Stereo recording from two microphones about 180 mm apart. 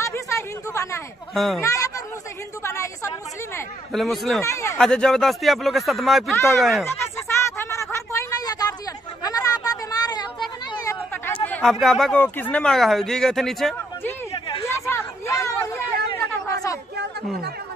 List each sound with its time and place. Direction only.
0.0 s a sound: 15° left (ahead or behind)
1.3 s speech: centre (ahead or behind)
1.6 s a woman's voice: 20° left (ahead or behind)
3.9 s speech: centre (ahead or behind)
4.4 s a woman's voice: 15° left (ahead or behind)
4.7 s speech: 5° left (ahead or behind)
6.3 s a woman's voice: 15° left (ahead or behind)
6.6 s speech: centre (ahead or behind)
6.9 s a sound: 15° left (ahead or behind)
10.7 s chatter: 15° left (ahead or behind)
11.4 s a sound: 10° left (ahead or behind)
11.8 s speech: centre (ahead or behind)
14.6 s a sound: 15° left (ahead or behind)